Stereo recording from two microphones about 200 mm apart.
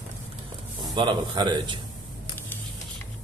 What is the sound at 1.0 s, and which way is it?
Speech, 20° right (ahead or behind).